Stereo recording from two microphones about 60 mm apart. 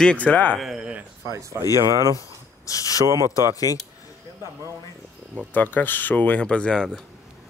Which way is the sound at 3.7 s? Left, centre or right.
Left.